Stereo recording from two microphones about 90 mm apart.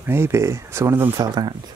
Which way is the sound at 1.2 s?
50° right (ahead or behind).